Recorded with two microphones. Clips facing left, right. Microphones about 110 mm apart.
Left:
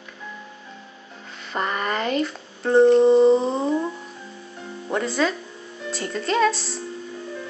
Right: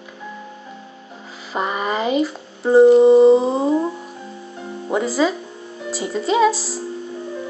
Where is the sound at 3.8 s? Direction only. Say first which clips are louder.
Right 5 dB; 20° right (ahead or behind).